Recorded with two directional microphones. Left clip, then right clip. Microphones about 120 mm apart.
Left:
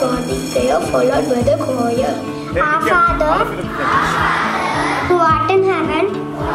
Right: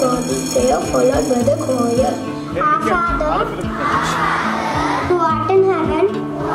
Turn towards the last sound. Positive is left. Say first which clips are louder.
# even
turn(degrees=15)  # may be behind; listen again after turning